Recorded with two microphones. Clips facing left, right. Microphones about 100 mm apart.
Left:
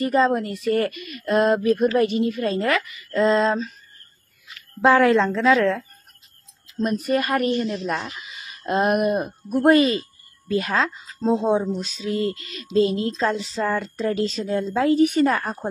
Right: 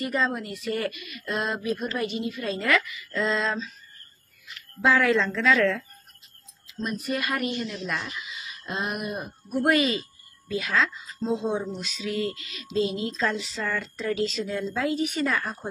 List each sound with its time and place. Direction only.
0.0 s speech: 40° left (ahead or behind)
4.8 s a woman's voice: 45° left (ahead or behind)
13.1 s a woman's voice: 30° left (ahead or behind)